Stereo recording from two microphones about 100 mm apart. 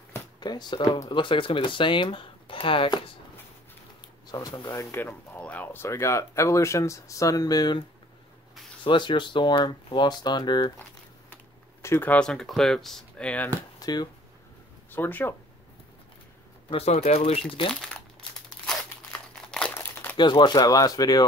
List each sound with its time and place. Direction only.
0.4 s speech: 45° left (ahead or behind); by 3.0 s 60° left (ahead or behind)
4.3 s speech: 35° left (ahead or behind)
4.9 s speech: 20° left (ahead or behind); by 7.8 s 40° left (ahead or behind)
8.8 s speech: 50° left (ahead or behind)
11.8 s speech: 20° left (ahead or behind)
12.2 s speech: 5° left (ahead or behind)
13.7 s a sound: 40° left (ahead or behind)
14.9 s speech: 20° left (ahead or behind)
16.7 s speech: 90° left
19.7 s crumpling: 20° left (ahead or behind)
20.2 s speech: 50° left (ahead or behind)